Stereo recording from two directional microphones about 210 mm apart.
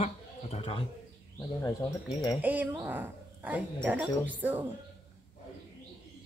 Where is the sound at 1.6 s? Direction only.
15° left (ahead or behind).